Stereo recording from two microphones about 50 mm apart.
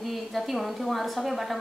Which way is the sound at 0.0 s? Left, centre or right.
Centre.